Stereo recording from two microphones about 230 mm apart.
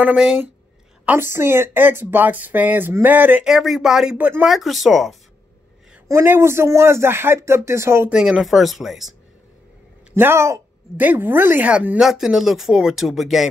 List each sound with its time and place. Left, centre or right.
0.0 s a woman's voice: centre
6.0 s speech: centre
10.1 s a woman's voice: centre